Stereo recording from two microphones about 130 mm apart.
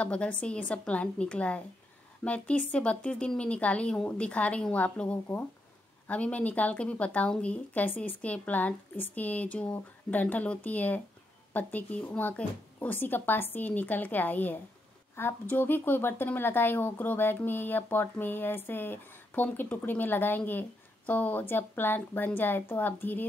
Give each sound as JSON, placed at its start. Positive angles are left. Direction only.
{"t": 0.0, "sound": "speech", "side_deg": 10}